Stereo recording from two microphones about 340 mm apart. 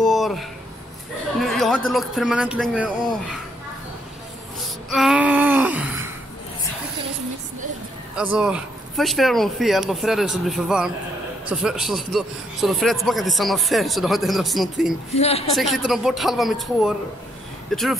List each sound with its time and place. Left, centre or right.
0.0 s a sound: centre
1.4 s chatter: centre
1.9 s a man's voice: centre
4.9 s a man's voice: centre
8.2 s a man's voice: centre
15.1 s a woman's voice: centre
15.5 s a man's voice: centre